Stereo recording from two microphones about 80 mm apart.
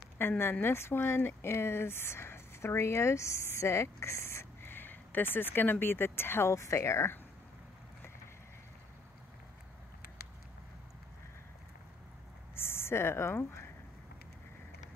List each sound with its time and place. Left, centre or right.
0.4 s speech: left
12.5 s speech: left